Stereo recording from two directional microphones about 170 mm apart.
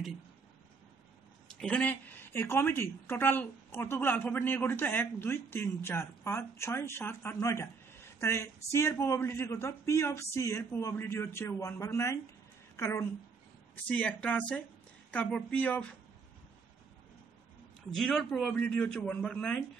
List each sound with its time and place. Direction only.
1.5 s a woman's voice: 5° left (ahead or behind)
17.9 s speech: 5° left (ahead or behind)